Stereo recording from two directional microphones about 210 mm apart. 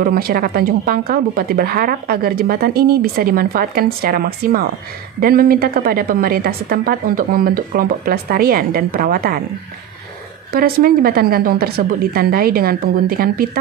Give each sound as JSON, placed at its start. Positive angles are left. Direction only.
{"t": 0.0, "sound": "a woman's voice", "side_deg": -45}
{"t": 10.5, "sound": "a woman's voice", "side_deg": -45}